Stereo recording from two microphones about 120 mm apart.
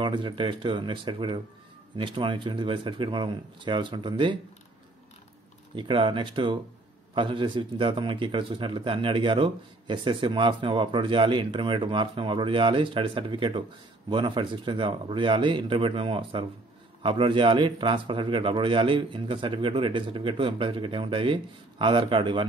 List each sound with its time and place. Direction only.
0.0 s a man's voice: 45° right (ahead or behind)
5.8 s a man's voice: 45° right (ahead or behind)